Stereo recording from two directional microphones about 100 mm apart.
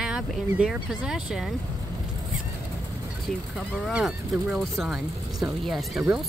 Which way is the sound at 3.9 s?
Centre (ahead or behind).